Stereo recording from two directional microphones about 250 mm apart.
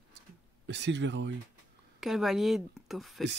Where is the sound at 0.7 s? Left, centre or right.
Right.